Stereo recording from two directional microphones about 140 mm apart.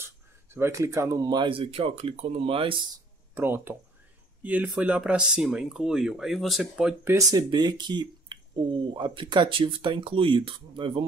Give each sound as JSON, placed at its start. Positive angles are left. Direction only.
{"t": 0.6, "sound": "speech", "side_deg": -20}
{"t": 3.3, "sound": "speech", "side_deg": -15}
{"t": 7.2, "sound": "speech", "side_deg": -25}